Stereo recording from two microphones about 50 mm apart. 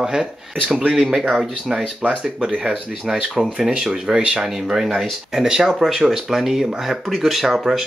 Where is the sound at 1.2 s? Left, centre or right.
Centre.